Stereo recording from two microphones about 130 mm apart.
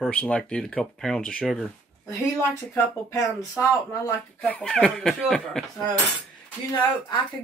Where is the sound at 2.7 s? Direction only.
25° left (ahead or behind).